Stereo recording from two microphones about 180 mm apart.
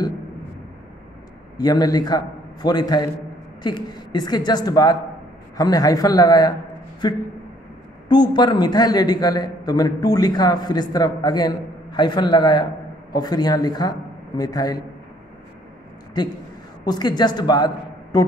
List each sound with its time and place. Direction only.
1.6 s a man's voice: 20° left (ahead or behind)
16.8 s a woman's voice: 25° left (ahead or behind)